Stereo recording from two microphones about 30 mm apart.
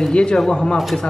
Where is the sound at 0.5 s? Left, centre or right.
Left.